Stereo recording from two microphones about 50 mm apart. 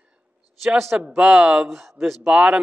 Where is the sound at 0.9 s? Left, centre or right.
Centre.